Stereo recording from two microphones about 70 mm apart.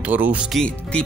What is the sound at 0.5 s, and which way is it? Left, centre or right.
Speech, centre.